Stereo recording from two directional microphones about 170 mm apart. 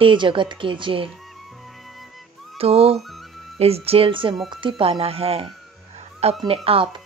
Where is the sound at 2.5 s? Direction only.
35° right (ahead or behind).